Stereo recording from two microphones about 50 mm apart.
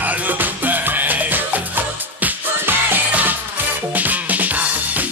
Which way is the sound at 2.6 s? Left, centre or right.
Right.